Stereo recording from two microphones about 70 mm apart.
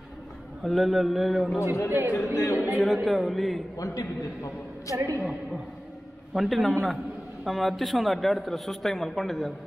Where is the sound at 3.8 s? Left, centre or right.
Left.